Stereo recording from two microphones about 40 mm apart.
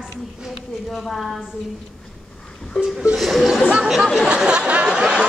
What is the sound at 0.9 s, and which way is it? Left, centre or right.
Speech, centre.